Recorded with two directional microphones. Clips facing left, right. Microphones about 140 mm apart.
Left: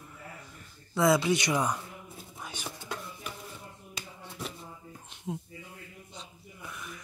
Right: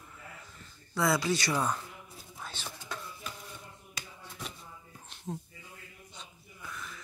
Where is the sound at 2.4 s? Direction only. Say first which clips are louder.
Left 1 dB; 15° left (ahead or behind).